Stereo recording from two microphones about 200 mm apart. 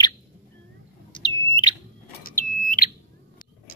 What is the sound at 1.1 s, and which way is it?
Chirp tone, 20° left (ahead or behind).